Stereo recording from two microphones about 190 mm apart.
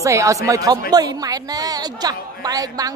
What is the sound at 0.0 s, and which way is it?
Speech, 15° right (ahead or behind).